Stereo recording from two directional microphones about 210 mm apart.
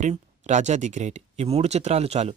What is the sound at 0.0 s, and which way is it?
Speech, 35° right (ahead or behind).